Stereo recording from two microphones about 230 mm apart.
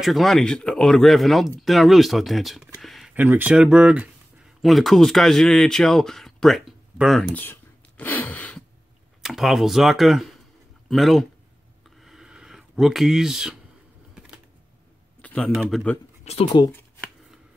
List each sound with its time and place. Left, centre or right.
0.0 s speech: centre
8.0 s a sound: centre
9.2 s speech: centre
12.0 s a sound: centre
15.2 s speech: centre
16.3 s speech: left